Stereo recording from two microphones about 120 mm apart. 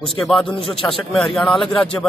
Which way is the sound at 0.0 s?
5° left (ahead or behind).